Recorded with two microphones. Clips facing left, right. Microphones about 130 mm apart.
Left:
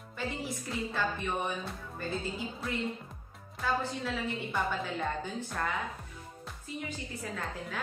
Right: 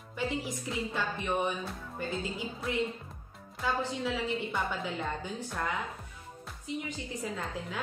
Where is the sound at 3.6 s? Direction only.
15° right (ahead or behind).